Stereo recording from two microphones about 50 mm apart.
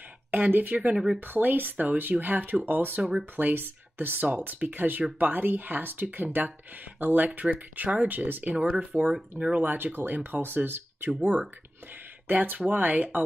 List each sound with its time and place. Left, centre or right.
0.3 s speech: right
0.9 s speech: centre
1.2 s speech: right
3.0 s speech: right
11.1 s speech: right